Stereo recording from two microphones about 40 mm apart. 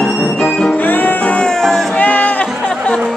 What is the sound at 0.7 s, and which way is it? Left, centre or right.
Music, left.